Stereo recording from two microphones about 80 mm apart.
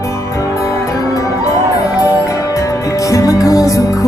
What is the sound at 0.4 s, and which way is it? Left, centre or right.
Music, left.